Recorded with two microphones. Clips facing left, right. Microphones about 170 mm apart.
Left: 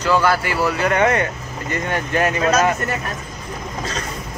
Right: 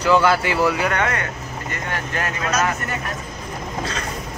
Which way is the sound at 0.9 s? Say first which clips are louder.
Left 6 dB; 20° left (ahead or behind).